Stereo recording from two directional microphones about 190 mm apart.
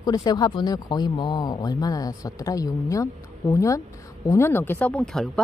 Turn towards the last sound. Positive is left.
turn(degrees=5)  # may be behind; listen again after turning